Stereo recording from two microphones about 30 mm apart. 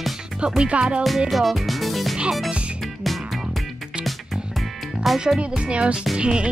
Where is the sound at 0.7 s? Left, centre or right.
Right.